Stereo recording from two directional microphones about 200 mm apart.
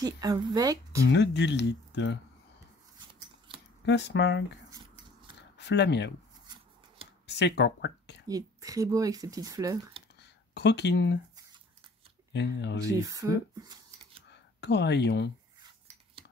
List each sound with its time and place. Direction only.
0.0 s speech: 20° right (ahead or behind)
1.1 s speech: 60° left (ahead or behind)
3.8 s speech: 60° left (ahead or behind)
4.6 s a sound: 20° right (ahead or behind)
5.6 s speech: 60° left (ahead or behind)
6.4 s a sound: 20° right (ahead or behind)
7.2 s speech: 60° left (ahead or behind)
8.3 s speech: 15° right (ahead or behind)
10.5 s speech: 55° left (ahead or behind)
12.3 s speech: 60° left (ahead or behind)
12.8 s speech: 15° right (ahead or behind)
14.3 s speech: 60° left (ahead or behind)